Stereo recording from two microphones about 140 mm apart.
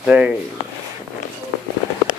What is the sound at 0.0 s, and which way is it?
Speech, 10° right (ahead or behind).